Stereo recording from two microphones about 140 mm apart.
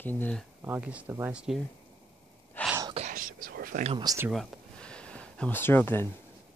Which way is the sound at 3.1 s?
85° right.